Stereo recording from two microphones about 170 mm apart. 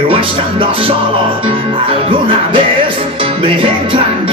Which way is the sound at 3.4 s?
30° right (ahead or behind).